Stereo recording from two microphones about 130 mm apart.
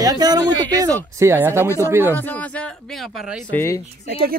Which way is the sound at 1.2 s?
20° right (ahead or behind).